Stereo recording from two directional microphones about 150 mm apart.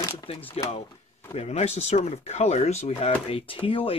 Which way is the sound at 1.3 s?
45° left (ahead or behind).